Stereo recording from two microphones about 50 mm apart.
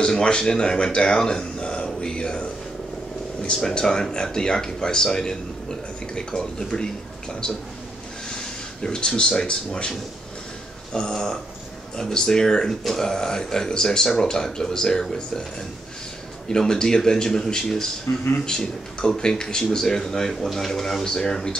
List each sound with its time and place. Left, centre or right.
0.0 s speech: centre
8.3 s speech: centre
16.4 s speech: centre
18.1 s speech: left
18.4 s speech: centre